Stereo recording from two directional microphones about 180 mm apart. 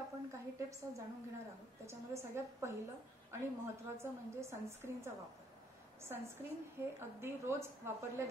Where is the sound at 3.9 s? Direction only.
15° right (ahead or behind).